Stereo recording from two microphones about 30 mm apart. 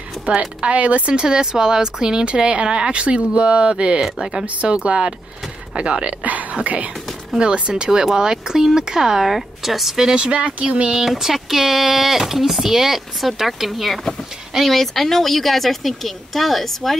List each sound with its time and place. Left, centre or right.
0.4 s speech: right
0.7 s speech: right
3.0 s speech: right
4.0 s speech: centre
4.6 s speech: right
6.5 s speech: right
7.3 s speech: right
7.7 s speech: right
9.2 s speech: centre
10.1 s speech: right
11.1 s speech: centre